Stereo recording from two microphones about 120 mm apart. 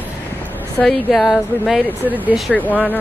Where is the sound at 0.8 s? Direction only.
Centre (ahead or behind).